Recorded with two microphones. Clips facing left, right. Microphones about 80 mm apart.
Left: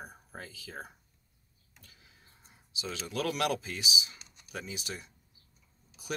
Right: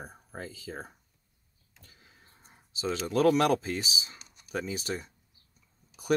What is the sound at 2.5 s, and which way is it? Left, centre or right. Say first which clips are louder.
Speech: right 8 dB; right.